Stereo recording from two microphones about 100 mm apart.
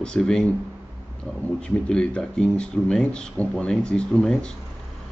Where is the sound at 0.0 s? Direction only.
5° left (ahead or behind).